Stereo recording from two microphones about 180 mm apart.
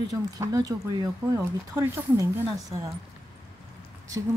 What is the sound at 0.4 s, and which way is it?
Speech, 20° right (ahead or behind).